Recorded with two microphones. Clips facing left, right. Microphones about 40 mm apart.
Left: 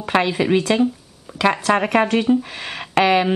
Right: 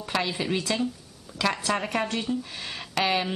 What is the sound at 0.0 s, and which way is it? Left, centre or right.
Speech, left.